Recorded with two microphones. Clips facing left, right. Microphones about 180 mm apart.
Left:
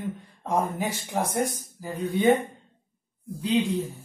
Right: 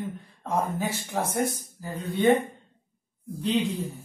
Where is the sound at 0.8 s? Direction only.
15° left (ahead or behind).